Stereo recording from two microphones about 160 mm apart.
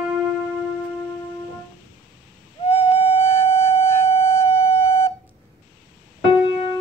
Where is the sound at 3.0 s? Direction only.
15° left (ahead or behind).